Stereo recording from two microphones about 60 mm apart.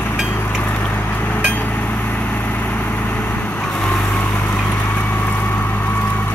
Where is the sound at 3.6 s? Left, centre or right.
Centre.